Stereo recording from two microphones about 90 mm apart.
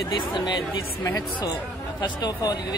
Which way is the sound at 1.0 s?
40° left (ahead or behind).